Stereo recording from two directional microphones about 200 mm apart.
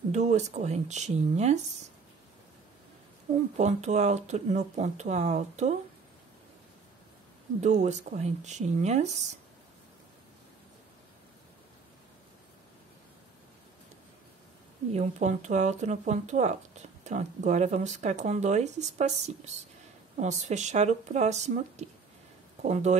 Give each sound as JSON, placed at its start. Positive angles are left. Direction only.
{"t": 0.1, "sound": "speech", "side_deg": -35}
{"t": 3.5, "sound": "speech", "side_deg": -35}
{"t": 7.6, "sound": "speech", "side_deg": -35}
{"t": 14.9, "sound": "speech", "side_deg": -35}